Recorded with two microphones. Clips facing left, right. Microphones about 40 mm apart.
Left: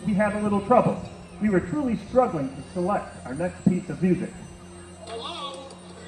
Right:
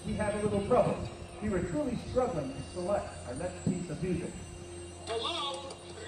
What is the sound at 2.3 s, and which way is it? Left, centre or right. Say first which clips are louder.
Speech: left 6 dB; left.